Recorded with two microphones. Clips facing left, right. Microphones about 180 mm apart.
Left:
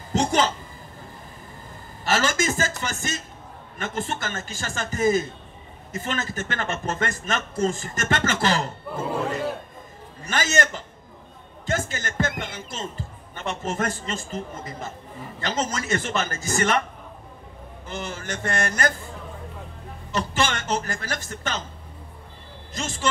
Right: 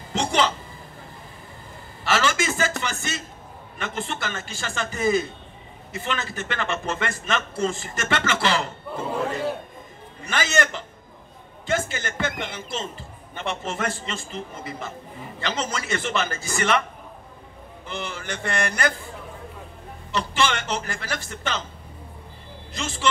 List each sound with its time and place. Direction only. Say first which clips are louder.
0.1 s a sound: left 1 dB; 40° left (ahead or behind)
2.0 s a sound: even; 45° left (ahead or behind)
2.8 s speech: even; 45° left (ahead or behind)
10.2 s a man's voice: even; 40° left (ahead or behind)
17.8 s speech: even; 40° left (ahead or behind)
20.1 s speech: right 1 dB; 45° left (ahead or behind)
22.8 s speech: even; 40° left (ahead or behind)